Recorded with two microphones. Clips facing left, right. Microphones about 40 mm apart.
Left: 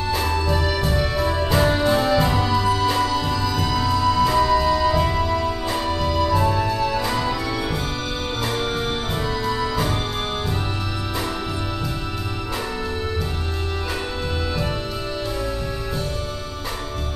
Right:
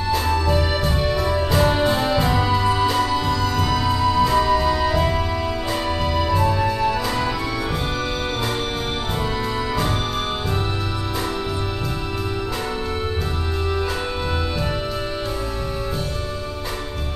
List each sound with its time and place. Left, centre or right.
0.5 s music: centre
1.2 s music: centre
1.7 s music: centre